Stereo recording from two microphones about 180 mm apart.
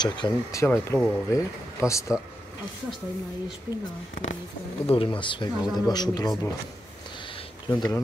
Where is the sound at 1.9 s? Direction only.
15° left (ahead or behind).